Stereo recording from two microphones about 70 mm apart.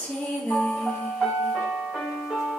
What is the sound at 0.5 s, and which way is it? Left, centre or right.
Music, centre.